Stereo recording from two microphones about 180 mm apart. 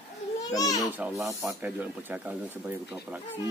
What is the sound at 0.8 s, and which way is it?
Speech, 10° right (ahead or behind).